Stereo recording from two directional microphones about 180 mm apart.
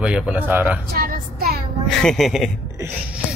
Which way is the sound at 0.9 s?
55° right (ahead or behind).